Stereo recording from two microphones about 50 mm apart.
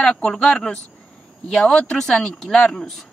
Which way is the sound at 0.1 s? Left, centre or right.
Left.